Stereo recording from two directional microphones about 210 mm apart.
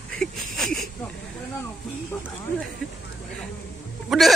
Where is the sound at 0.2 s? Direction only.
Centre (ahead or behind).